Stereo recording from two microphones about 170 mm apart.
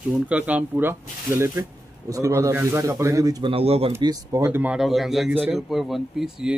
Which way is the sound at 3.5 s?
35° right (ahead or behind).